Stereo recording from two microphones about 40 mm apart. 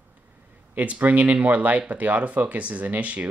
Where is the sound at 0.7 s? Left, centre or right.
Right.